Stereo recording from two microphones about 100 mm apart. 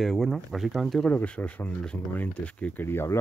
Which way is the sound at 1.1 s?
15° left (ahead or behind).